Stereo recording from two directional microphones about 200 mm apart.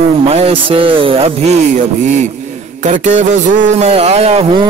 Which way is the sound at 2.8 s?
35° right (ahead or behind).